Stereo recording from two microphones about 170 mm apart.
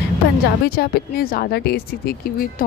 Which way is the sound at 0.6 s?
60° left (ahead or behind).